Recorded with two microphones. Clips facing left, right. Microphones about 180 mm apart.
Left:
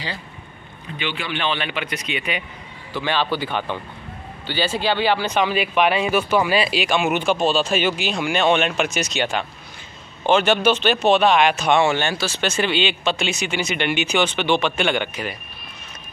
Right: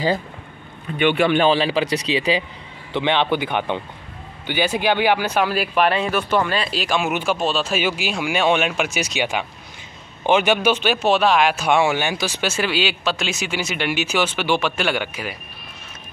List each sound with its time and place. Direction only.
0.9 s speech: 55° right (ahead or behind); by 2.4 s 30° right (ahead or behind)
2.9 s speech: 20° right (ahead or behind); by 6.8 s 10° left (ahead or behind)
6.9 s speech: 5° right (ahead or behind)